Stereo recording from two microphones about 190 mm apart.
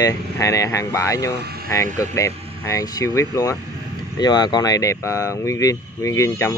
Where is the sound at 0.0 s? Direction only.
15° left (ahead or behind).